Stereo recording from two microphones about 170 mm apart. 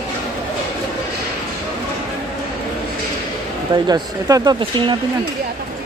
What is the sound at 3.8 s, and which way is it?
Speech, 25° right (ahead or behind).